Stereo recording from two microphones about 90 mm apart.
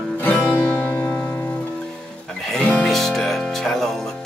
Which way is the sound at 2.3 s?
5° left (ahead or behind).